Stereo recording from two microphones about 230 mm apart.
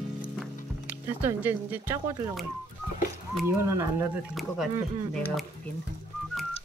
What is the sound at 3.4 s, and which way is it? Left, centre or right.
Speech, centre.